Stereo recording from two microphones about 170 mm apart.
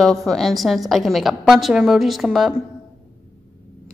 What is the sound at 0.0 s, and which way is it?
A woman's voice, centre (ahead or behind).